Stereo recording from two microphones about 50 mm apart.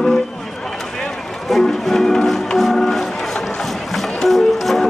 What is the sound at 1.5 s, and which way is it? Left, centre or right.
Music, centre.